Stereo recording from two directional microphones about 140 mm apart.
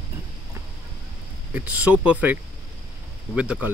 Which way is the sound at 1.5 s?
10° right (ahead or behind).